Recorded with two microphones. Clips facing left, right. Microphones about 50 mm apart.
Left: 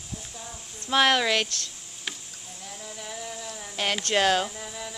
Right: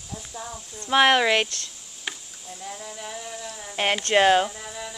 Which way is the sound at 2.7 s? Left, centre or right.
Centre.